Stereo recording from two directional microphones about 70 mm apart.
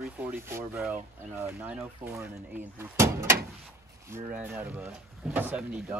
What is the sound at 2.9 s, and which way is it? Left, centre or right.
Speech, right.